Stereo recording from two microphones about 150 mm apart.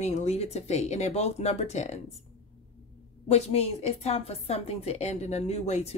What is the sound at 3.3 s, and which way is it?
A woman's voice, 45° left (ahead or behind).